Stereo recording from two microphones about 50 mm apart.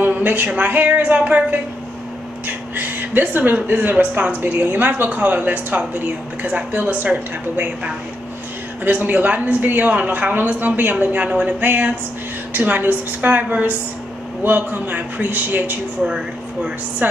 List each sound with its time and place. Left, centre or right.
0.0 s a sound: right
0.5 s speech: right
2.4 s a woman's voice: right
11.2 s a woman's voice: right
11.6 s speech: right
16.0 s speech: centre
17.0 s speech: right